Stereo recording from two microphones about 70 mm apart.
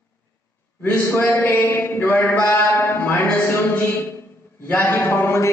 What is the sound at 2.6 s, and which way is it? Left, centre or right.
Music, left.